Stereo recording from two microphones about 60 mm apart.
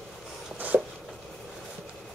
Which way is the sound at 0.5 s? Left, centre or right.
Right.